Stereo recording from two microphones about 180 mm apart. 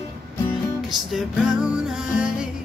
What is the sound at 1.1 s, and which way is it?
Music, 5° right (ahead or behind).